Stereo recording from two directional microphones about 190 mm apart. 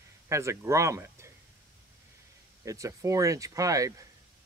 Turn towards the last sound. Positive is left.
turn(degrees=-15)  # may be behind; listen again after turning